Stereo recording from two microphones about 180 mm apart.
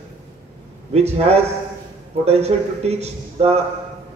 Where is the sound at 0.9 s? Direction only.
35° right (ahead or behind).